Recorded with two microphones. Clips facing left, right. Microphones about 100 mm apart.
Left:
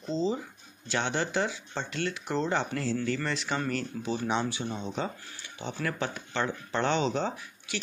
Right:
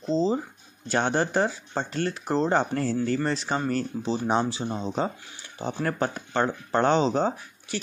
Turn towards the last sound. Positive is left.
turn(degrees=-40)  # may be behind; listen again after turning